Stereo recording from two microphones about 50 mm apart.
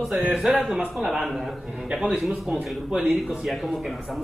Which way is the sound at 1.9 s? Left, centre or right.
Right.